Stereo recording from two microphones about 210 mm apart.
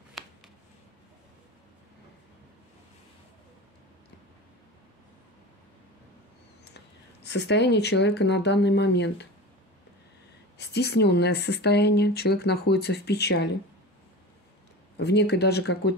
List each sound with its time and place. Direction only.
0.2 s a sound: centre (ahead or behind)
7.2 s speech: 55° left (ahead or behind)
10.6 s speech: 50° left (ahead or behind)
15.0 s speech: 50° left (ahead or behind)